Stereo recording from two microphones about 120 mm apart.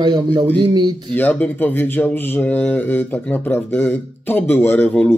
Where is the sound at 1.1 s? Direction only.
15° left (ahead or behind).